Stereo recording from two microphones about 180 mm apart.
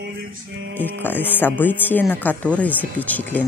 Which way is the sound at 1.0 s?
10° left (ahead or behind).